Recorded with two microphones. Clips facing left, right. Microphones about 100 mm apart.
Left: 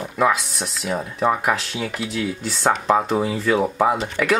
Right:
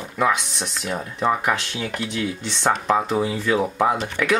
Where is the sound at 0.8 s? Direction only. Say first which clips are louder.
Left 2 dB; centre (ahead or behind).